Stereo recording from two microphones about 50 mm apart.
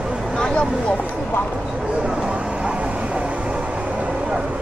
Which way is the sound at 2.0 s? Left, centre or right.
Centre.